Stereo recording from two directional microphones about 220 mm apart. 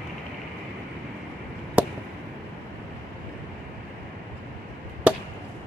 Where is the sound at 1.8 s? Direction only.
5° right (ahead or behind).